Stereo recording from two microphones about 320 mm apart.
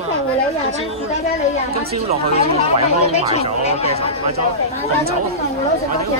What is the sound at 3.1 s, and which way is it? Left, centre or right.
Speech, centre.